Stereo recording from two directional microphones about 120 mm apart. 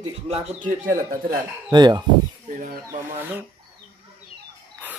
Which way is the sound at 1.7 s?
35° right (ahead or behind).